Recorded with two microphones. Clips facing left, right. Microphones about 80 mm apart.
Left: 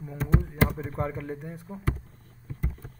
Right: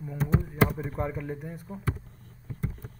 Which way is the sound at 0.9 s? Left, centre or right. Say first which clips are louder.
Even; centre.